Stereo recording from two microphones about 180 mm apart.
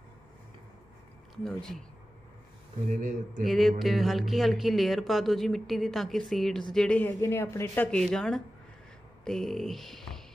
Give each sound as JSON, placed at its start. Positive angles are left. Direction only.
{"t": 1.3, "sound": "speech", "side_deg": 0}
{"t": 2.9, "sound": "speech", "side_deg": -45}
{"t": 3.4, "sound": "a woman's voice", "side_deg": 0}